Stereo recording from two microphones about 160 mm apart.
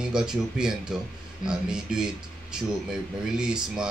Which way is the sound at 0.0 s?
5° right (ahead or behind).